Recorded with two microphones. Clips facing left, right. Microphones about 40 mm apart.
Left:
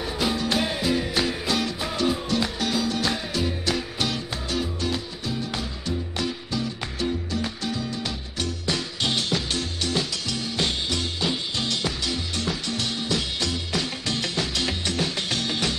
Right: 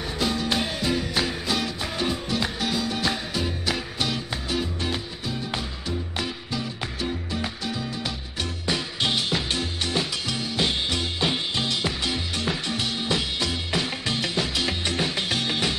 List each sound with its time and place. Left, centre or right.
0.2 s music: centre
11.1 s music: right